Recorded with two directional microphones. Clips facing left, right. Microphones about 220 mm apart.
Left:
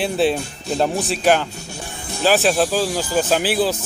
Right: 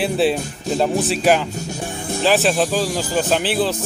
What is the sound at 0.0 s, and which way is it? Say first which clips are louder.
Speech: right 1 dB; centre (ahead or behind).